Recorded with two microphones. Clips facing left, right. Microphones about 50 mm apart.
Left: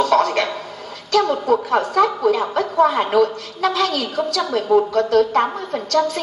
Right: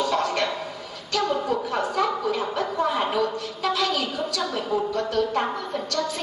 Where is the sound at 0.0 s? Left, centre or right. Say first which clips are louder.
Left 7 dB; left.